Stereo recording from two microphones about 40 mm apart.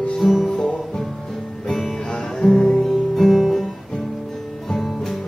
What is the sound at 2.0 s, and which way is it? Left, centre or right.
Music, centre.